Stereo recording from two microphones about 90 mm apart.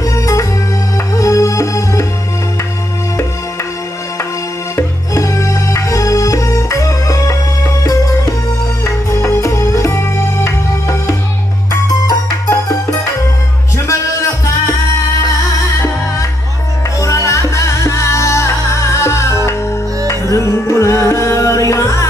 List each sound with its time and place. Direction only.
0.0 s music: 35° left (ahead or behind)
4.7 s music: 35° left (ahead or behind)
17.3 s music: 35° left (ahead or behind)